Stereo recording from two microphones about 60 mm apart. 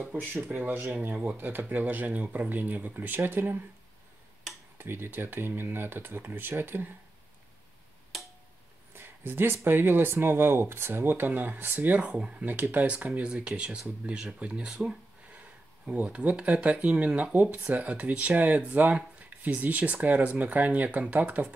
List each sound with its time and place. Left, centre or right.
0.4 s speech: right
3.2 s speech: right
4.7 s speech: right
8.9 s a sound: right
9.7 s speech: right
12.1 s speech: centre
12.4 s speech: right; by 15.0 s centre
15.9 s speech: right